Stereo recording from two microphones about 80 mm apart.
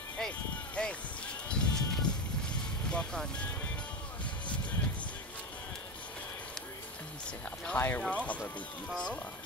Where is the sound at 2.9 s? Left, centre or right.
Centre.